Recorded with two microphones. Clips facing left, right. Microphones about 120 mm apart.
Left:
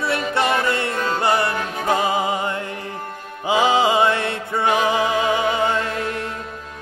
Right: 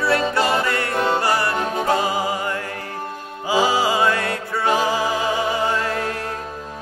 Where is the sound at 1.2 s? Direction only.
20° left (ahead or behind).